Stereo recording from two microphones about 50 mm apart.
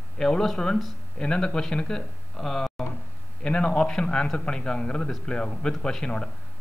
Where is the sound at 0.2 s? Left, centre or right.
Centre.